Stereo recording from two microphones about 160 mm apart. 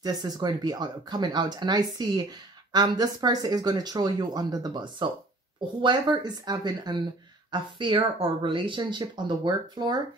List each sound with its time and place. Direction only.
0.0 s speech: 25° right (ahead or behind)